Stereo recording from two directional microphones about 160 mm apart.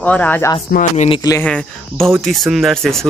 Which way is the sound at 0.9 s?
35° left (ahead or behind).